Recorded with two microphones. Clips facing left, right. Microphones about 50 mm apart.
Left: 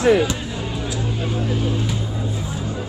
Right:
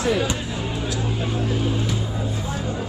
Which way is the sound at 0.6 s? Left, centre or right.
Centre.